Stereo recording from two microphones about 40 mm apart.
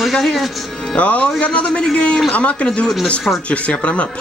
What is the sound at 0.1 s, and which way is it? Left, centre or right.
Speech, centre.